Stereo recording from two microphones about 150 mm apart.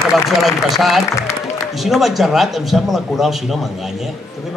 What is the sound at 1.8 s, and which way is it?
A man's voice, centre (ahead or behind).